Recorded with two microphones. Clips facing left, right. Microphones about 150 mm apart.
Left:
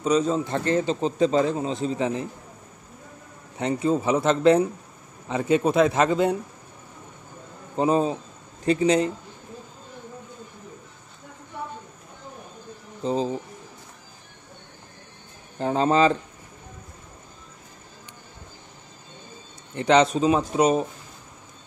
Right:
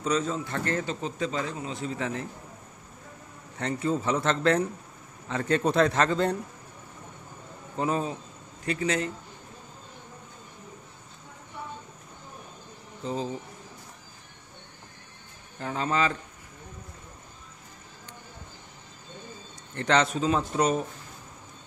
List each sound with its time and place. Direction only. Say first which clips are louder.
0.0 s a man's voice: left 6 dB; 15° left (ahead or behind)
3.5 s speech: left 5 dB; 15° left (ahead or behind)
7.7 s a man's voice: left 7 dB; 20° left (ahead or behind)
13.0 s a man's voice: left 7 dB; 20° left (ahead or behind)
15.6 s a man's voice: left 8 dB; 30° left (ahead or behind)
19.7 s speech: left 6 dB; 15° left (ahead or behind)